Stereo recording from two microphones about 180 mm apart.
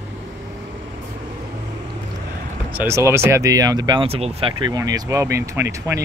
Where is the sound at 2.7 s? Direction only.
15° right (ahead or behind).